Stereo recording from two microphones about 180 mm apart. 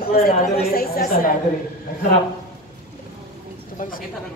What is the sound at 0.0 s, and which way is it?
A woman's voice, 55° left (ahead or behind).